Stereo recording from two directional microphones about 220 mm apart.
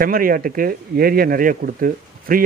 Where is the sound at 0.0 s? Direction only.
40° right (ahead or behind).